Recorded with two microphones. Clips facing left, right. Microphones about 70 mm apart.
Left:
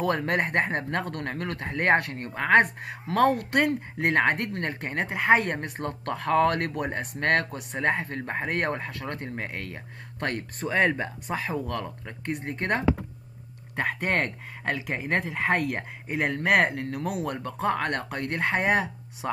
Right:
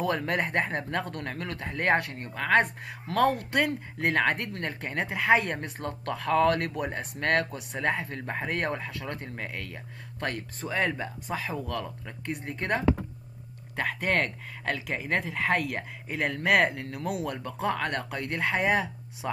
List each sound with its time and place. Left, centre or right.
0.2 s a woman's voice: left
4.9 s speech: centre
5.3 s a woman's voice: left
12.3 s a woman's voice: left
14.1 s speech: left
15.1 s speech: centre
16.7 s a woman's voice: left